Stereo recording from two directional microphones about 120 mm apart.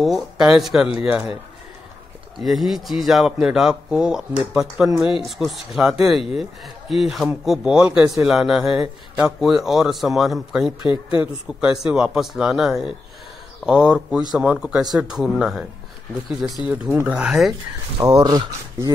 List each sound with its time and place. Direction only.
0.0 s speech: 5° right (ahead or behind)
2.4 s speech: centre (ahead or behind)
10.8 s speech: 40° left (ahead or behind)
11.1 s speech: 5° right (ahead or behind)
16.6 s speech: 10° right (ahead or behind)
18.0 s speech: 35° right (ahead or behind)